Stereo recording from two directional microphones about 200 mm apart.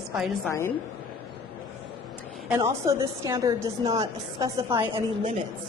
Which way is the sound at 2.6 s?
15° right (ahead or behind).